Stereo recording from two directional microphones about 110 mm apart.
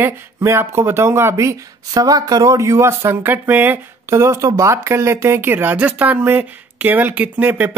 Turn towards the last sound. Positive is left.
turn(degrees=-15)  # may be behind; listen again after turning